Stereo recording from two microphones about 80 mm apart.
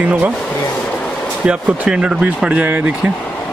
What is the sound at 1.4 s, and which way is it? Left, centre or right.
Speech, centre.